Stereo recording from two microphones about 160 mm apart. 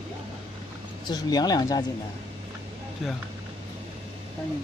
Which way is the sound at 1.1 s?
25° left (ahead or behind).